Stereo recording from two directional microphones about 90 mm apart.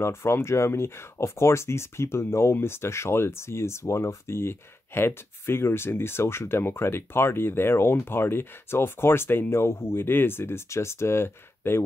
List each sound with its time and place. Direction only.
0.0 s speech: 30° left (ahead or behind)